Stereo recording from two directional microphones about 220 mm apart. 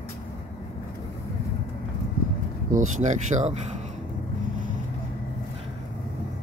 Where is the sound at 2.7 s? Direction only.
35° right (ahead or behind).